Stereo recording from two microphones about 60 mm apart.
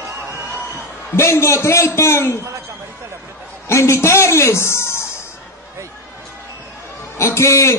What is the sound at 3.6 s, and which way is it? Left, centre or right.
A man's voice, left.